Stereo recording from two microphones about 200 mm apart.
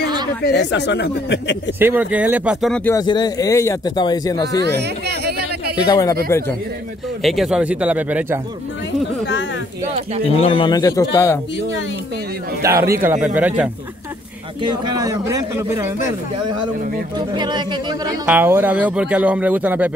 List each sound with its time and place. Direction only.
0.4 s speech: 60° left (ahead or behind)
1.8 s speech: 10° right (ahead or behind); by 4.6 s 20° left (ahead or behind)
4.6 s speech: 55° right (ahead or behind)
5.9 s speech: 15° left (ahead or behind)
7.2 s speech: centre (ahead or behind)
10.4 s speech: 25° left (ahead or behind)
12.6 s speech: 15° right (ahead or behind)
14.6 s speech: 20° right (ahead or behind)
17.4 s speech: 20° right (ahead or behind)
18.2 s speech: 10° right (ahead or behind)